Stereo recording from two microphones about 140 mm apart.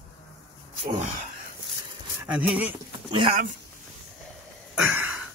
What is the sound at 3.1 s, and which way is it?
Speech, 40° right (ahead or behind).